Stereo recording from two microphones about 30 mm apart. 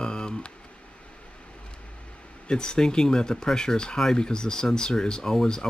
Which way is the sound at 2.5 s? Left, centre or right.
Left.